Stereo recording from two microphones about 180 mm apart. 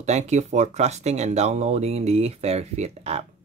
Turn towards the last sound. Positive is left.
turn(degrees=-35)  # may be behind; listen again after turning